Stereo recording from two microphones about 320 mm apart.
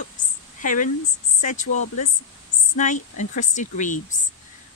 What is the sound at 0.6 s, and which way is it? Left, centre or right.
A woman's voice, left.